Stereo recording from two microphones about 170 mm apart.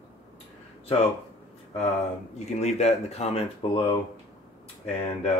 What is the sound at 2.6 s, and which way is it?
Speech, 40° left (ahead or behind).